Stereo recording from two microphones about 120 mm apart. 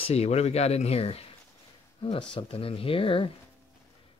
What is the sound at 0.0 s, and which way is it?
Speech, 60° left (ahead or behind).